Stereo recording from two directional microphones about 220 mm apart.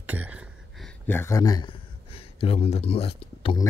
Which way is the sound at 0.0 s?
5° right (ahead or behind).